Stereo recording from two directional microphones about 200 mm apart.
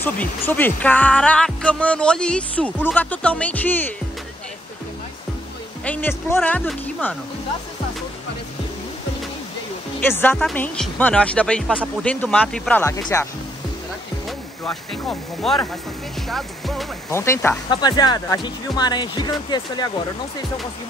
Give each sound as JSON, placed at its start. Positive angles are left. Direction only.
{"t": 0.0, "sound": "speech", "side_deg": 10}
{"t": 5.9, "sound": "speech", "side_deg": 10}
{"t": 9.9, "sound": "speech", "side_deg": 10}
{"t": 14.6, "sound": "speech", "side_deg": 0}
{"t": 17.1, "sound": "speech", "side_deg": 15}